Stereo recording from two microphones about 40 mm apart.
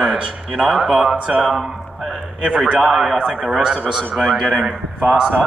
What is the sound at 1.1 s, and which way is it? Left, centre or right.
Speech, right.